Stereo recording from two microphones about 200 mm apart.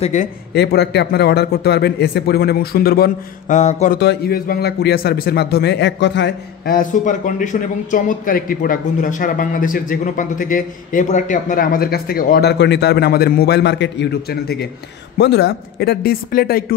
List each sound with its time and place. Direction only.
0.0 s a man's voice: 35° left (ahead or behind)
0.6 s a man's voice: 55° left (ahead or behind); by 4.0 s 35° left (ahead or behind)
4.0 s a man's voice: 55° left (ahead or behind)